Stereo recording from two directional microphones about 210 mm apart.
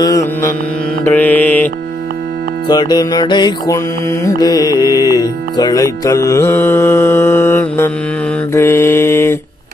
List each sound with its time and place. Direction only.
1.0 s music: 10° left (ahead or behind)
2.7 s music: 20° left (ahead or behind)